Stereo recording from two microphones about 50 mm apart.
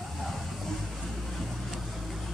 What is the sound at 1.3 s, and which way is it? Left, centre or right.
Vehicle, centre.